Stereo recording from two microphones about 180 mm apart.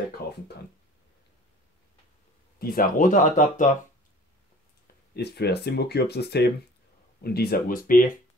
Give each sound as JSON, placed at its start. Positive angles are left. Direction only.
{"t": 0.2, "sound": "a sound", "side_deg": 60}
{"t": 2.6, "sound": "speech", "side_deg": 50}
{"t": 5.1, "sound": "speech", "side_deg": 65}